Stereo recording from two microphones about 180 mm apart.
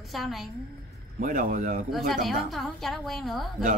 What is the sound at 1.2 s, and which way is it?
Speech, 50° right (ahead or behind).